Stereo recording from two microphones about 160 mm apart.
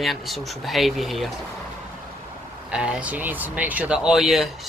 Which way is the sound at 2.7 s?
5° right (ahead or behind).